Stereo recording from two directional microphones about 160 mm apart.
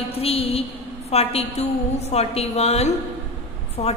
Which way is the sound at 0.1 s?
35° left (ahead or behind).